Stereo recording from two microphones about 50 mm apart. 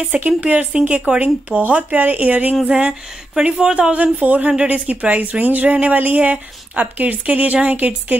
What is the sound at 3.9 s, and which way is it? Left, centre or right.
Speech, right.